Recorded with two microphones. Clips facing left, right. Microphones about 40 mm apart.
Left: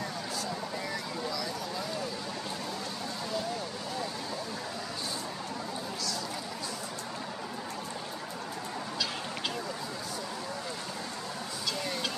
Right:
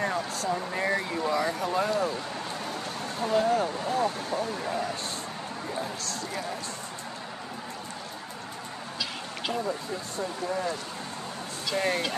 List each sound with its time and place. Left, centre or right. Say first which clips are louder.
0.0 s a sound: right 6 dB; right
0.7 s speech: right 8 dB; right
3.2 s speech: right 12 dB; right
11.7 s speech: right 11 dB; right